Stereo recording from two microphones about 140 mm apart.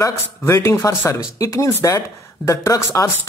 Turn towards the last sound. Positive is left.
turn(degrees=20)  # may be behind; listen again after turning